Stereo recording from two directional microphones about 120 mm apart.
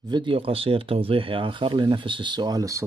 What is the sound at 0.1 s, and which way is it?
Speech, 45° right (ahead or behind).